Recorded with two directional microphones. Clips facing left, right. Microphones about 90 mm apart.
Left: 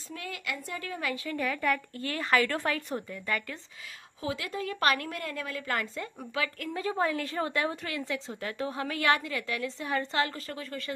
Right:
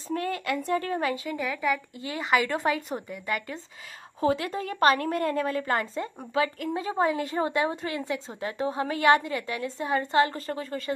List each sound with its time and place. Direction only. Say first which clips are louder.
0.1 s speech: right 9 dB; 45° right (ahead or behind)
1.1 s a woman's voice: right 3 dB; 20° right (ahead or behind)
1.4 s a woman's voice: even; 5° right (ahead or behind)
4.2 s a woman's voice: right 8 dB; 40° right (ahead or behind)
5.7 s a woman's voice: right 5 dB; 25° right (ahead or behind)